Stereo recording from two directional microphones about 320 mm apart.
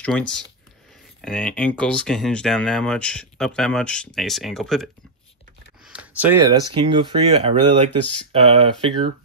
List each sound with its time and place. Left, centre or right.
0.0 s speech: centre
5.9 s speech: centre